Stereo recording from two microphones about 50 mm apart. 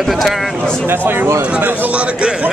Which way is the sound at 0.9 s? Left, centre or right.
Right.